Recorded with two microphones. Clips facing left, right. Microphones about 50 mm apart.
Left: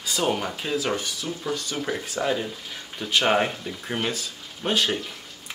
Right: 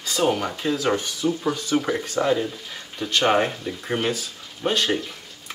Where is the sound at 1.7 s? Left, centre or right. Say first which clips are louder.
Right 9 dB; centre.